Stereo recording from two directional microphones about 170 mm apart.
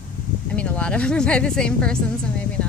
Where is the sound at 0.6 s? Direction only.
5° left (ahead or behind).